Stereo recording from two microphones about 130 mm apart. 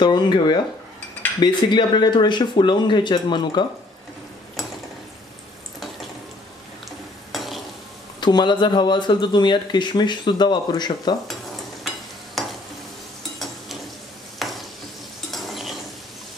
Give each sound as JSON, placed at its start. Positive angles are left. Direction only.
{"t": 0.0, "sound": "speech", "side_deg": 35}
{"t": 7.3, "sound": "stir", "side_deg": 0}
{"t": 8.2, "sound": "speech", "side_deg": 35}
{"t": 12.4, "sound": "stir", "side_deg": 0}
{"t": 14.4, "sound": "stir", "side_deg": 0}
{"t": 15.3, "sound": "a sound", "side_deg": 0}